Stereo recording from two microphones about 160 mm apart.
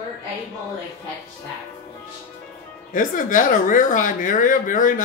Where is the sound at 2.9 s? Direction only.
55° left (ahead or behind).